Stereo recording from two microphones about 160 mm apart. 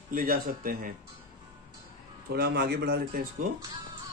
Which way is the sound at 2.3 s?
90° right.